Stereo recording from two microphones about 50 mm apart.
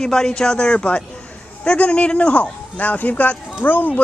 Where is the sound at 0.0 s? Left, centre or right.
Centre; by 3.9 s left.